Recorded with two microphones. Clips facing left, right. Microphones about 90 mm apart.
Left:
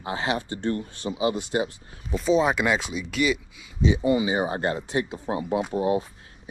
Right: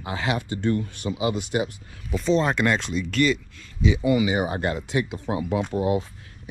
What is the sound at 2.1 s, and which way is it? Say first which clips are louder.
Speech: even; 5° left (ahead or behind).